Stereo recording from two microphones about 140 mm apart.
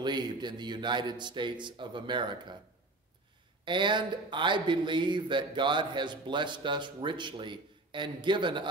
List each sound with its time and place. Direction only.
0.0 s speech: 30° right (ahead or behind)
3.6 s speech: 35° right (ahead or behind)